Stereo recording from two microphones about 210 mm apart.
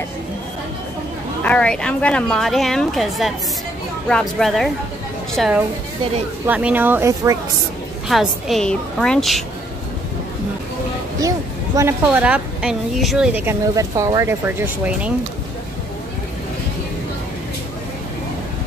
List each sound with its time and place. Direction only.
1.4 s a woman's voice: 5° left (ahead or behind); by 7.3 s 15° right (ahead or behind)
8.1 s a woman's voice: centre (ahead or behind)
11.1 s a sound: 15° right (ahead or behind)
12.0 s a woman's voice: 5° right (ahead or behind)